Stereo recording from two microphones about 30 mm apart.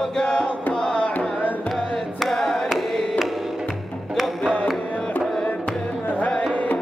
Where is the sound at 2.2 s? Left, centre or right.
Centre.